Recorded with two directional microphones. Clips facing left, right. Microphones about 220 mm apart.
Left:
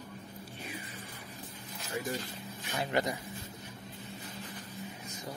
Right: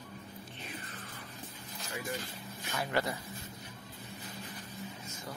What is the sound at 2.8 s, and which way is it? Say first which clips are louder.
Speech: left 2 dB; 20° left (ahead or behind).